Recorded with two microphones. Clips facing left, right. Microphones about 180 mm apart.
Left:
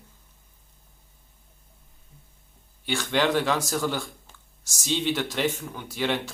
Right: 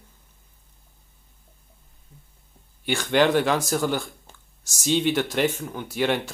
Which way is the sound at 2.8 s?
55° right (ahead or behind).